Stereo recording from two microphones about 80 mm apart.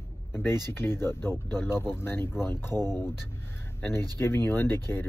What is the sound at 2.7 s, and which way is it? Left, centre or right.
Speech, right.